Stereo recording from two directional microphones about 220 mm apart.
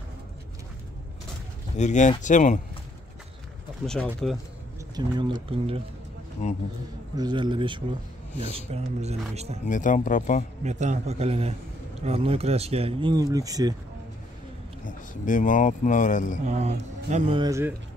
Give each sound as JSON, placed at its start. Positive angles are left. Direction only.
{"t": 1.8, "sound": "speech", "side_deg": 35}
{"t": 3.8, "sound": "speech", "side_deg": 5}
{"t": 4.9, "sound": "speech", "side_deg": -20}
{"t": 7.2, "sound": "speech", "side_deg": -20}
{"t": 9.7, "sound": "speech", "side_deg": 35}
{"t": 10.6, "sound": "speech", "side_deg": -30}
{"t": 14.9, "sound": "speech", "side_deg": 35}
{"t": 16.4, "sound": "speech", "side_deg": -30}
{"t": 17.4, "sound": "speech", "side_deg": -15}